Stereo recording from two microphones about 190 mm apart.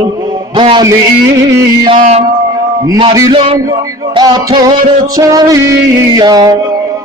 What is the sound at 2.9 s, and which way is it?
Music, 20° right (ahead or behind).